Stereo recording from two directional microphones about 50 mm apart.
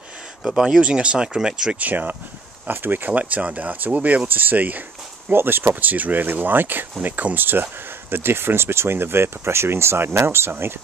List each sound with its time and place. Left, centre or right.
0.4 s speech: centre
0.7 s speech: right
1.8 s speech: right
3.1 s speech: right
5.3 s speech: right
5.8 s speech: right